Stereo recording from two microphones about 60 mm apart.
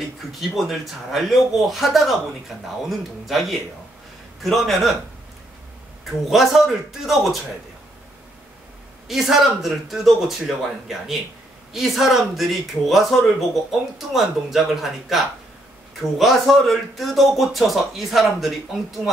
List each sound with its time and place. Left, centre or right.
0.3 s speech: centre
6.0 s speech: centre
9.0 s speech: centre